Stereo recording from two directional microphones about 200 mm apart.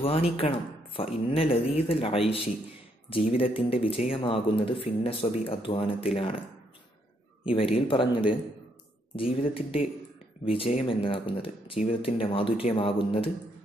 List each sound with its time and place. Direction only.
0.0 s speech: 30° left (ahead or behind)
7.4 s speech: 30° left (ahead or behind)
9.1 s speech: 25° left (ahead or behind)